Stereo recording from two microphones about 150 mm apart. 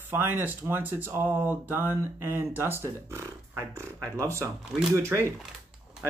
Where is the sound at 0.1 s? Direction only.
15° right (ahead or behind).